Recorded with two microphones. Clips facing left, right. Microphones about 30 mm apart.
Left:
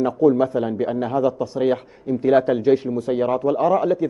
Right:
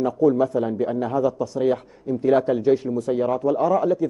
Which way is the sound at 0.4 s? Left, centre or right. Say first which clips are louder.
Left 1 dB; left.